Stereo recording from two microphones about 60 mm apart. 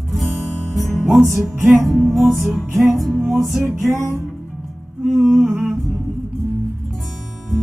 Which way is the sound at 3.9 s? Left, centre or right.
Centre.